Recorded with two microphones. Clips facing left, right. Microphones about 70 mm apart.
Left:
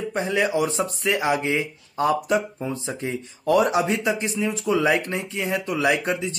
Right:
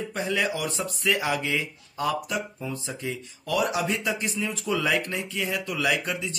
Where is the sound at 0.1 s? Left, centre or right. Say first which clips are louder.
Left 5 dB; left.